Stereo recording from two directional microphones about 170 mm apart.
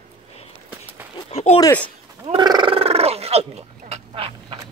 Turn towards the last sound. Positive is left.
turn(degrees=-35)  # may be behind; listen again after turning